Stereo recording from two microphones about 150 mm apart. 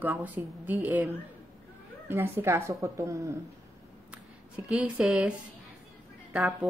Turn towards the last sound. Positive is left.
turn(degrees=-5)  # may be behind; listen again after turning